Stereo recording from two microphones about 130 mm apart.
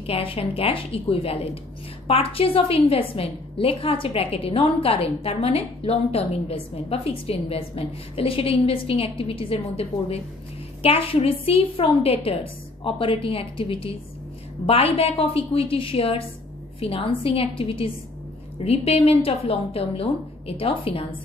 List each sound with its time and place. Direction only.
0.0 s a woman's voice: 45° left (ahead or behind)